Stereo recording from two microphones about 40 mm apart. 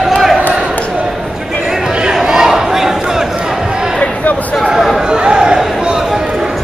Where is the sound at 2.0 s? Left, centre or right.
Centre.